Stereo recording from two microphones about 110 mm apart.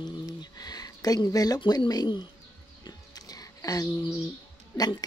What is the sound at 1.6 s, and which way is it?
Speech, 45° left (ahead or behind).